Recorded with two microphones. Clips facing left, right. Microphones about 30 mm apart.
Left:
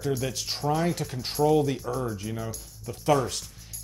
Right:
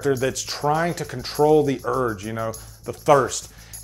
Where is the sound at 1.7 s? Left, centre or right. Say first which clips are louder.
Right 7 dB; right.